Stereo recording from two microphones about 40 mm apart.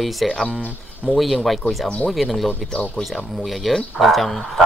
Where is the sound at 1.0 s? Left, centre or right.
Centre.